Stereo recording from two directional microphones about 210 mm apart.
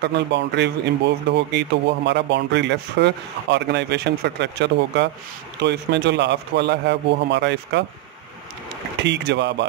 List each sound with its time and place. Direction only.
0.0 s speech: 55° right (ahead or behind)
9.0 s speech: 55° right (ahead or behind)